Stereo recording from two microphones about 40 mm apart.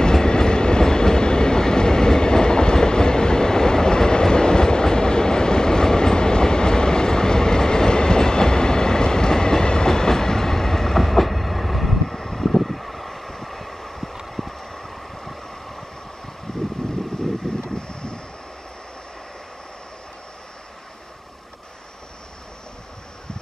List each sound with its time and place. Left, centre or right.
0.0 s train: centre
14.3 s vehicle: centre
14.7 s vehicle: centre